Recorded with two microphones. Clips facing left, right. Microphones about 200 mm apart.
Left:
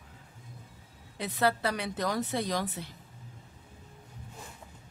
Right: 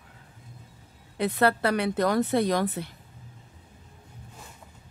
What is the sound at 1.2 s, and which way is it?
Speech, 60° right (ahead or behind).